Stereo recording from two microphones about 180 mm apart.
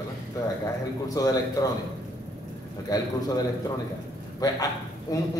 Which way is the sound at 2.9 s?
20° left (ahead or behind).